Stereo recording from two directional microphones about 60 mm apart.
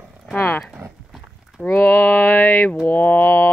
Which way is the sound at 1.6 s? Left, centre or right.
Left.